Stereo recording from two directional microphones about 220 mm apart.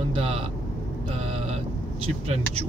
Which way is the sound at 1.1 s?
30° right (ahead or behind).